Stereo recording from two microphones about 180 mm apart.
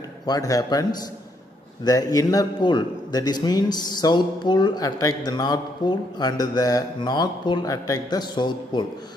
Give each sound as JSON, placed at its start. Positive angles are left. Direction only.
{"t": 0.3, "sound": "a man's voice", "side_deg": 20}
{"t": 1.9, "sound": "a man's voice", "side_deg": 20}